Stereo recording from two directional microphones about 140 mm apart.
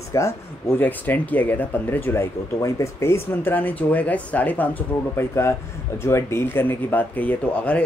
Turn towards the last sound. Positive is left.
turn(degrees=10)  # may be behind; listen again after turning